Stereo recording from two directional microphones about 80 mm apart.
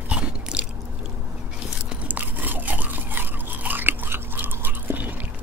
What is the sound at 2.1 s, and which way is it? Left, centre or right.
Crunch, right.